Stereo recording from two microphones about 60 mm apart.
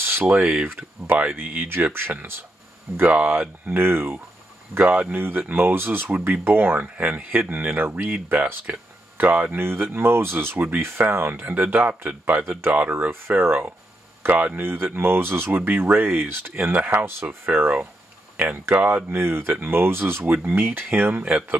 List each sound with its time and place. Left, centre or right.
0.0 s a sound: right
0.4 s speech: centre
1.0 s speech: right
3.0 s speech: right
4.7 s speech: right
6.8 s speech: right
14.6 s speech: right
16.7 s speech: right